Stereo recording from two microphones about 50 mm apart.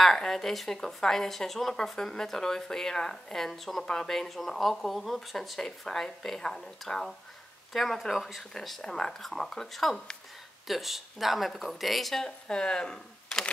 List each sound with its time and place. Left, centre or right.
0.0 s a woman's voice: centre
8.5 s speech: centre
12.3 s speech: centre